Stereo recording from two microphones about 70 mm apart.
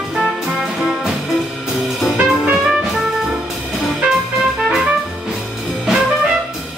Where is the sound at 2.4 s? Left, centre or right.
Centre.